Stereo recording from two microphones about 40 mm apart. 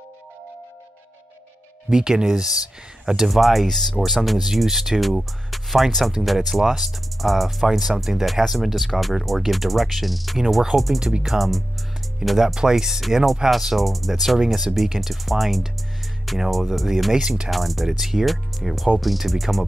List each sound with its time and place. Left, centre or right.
1.9 s speech: centre
3.3 s speech: centre
12.5 s speech: centre
13.0 s speech: centre
17.2 s speech: centre
17.5 s speech: centre